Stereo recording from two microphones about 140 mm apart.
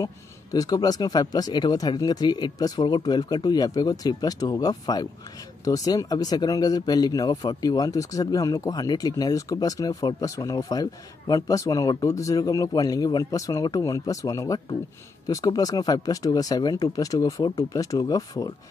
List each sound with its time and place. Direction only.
0.0 s speech: 25° left (ahead or behind)